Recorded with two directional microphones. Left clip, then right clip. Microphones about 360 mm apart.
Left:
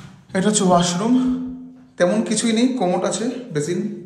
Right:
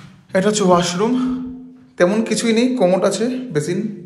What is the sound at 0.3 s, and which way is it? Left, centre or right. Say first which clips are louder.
A man's voice: right 3 dB; centre.